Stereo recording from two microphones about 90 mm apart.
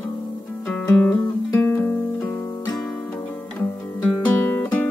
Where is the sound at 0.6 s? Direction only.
15° left (ahead or behind).